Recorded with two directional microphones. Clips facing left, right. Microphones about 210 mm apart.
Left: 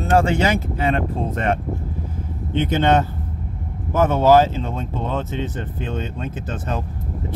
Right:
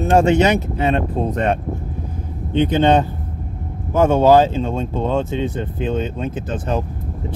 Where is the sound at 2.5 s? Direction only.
15° right (ahead or behind).